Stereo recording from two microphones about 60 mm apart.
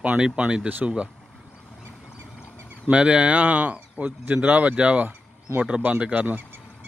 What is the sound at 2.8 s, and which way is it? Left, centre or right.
Speech, centre.